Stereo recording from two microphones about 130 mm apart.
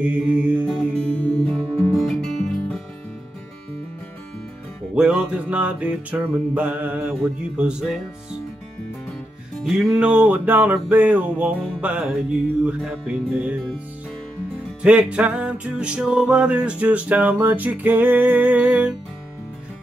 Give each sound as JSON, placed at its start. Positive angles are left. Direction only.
{"t": 0.0, "sound": "music", "side_deg": -10}
{"t": 0.7, "sound": "music", "side_deg": 5}
{"t": 4.9, "sound": "music", "side_deg": -5}
{"t": 9.6, "sound": "music", "side_deg": 0}
{"t": 14.8, "sound": "music", "side_deg": -10}